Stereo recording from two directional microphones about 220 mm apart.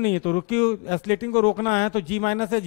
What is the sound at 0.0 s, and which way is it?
A man's voice, 15° left (ahead or behind).